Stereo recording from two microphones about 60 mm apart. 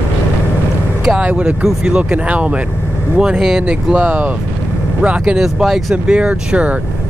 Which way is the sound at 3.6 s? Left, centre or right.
Right.